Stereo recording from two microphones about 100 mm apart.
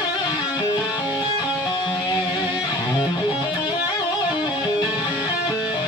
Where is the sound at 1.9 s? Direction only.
45° left (ahead or behind).